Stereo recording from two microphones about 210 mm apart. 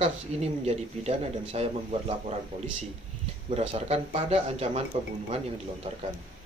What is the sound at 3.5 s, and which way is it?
Speech, 30° right (ahead or behind).